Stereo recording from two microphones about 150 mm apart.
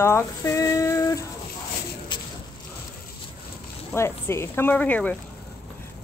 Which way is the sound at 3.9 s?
15° left (ahead or behind).